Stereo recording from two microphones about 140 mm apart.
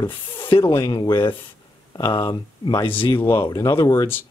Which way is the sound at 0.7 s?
25° left (ahead or behind).